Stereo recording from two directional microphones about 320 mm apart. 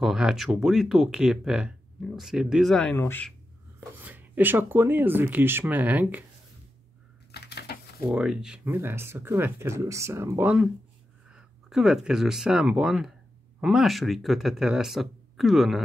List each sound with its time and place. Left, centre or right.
0.0 s speech: centre
4.0 s speech: centre
7.3 s typewriter: left
8.1 s speech: centre